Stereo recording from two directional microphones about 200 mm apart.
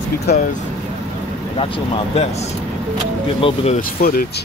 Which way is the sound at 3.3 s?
30° left (ahead or behind).